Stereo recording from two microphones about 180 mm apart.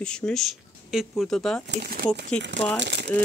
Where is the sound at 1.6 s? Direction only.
60° right (ahead or behind).